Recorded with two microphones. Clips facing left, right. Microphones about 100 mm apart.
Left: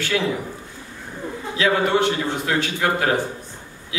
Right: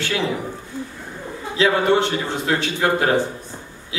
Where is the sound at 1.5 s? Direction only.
20° right (ahead or behind).